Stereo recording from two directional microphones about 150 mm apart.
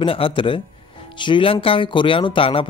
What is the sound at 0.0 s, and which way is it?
A man's voice, 35° left (ahead or behind).